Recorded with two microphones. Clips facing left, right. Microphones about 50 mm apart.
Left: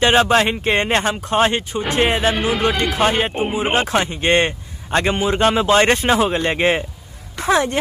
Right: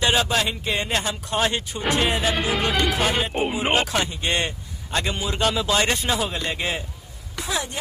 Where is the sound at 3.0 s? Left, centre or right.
Left.